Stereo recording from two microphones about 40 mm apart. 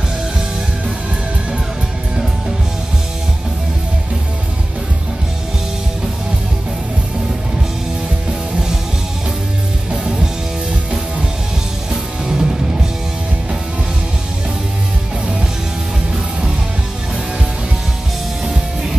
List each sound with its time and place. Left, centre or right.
9.8 s music: right
11.9 s music: centre
18.4 s music: centre